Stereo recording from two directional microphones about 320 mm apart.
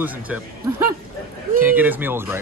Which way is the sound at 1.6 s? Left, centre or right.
Centre.